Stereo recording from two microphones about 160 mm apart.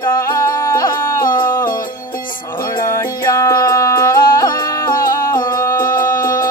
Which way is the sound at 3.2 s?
20° left (ahead or behind).